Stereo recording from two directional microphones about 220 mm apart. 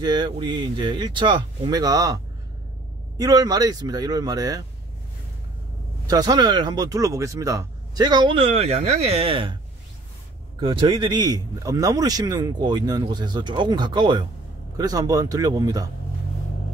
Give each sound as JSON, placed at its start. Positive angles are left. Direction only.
{"t": 0.0, "sound": "a man's voice", "side_deg": -20}
{"t": 3.2, "sound": "speech", "side_deg": -15}
{"t": 6.0, "sound": "a man's voice", "side_deg": -15}
{"t": 10.6, "sound": "a man's voice", "side_deg": -20}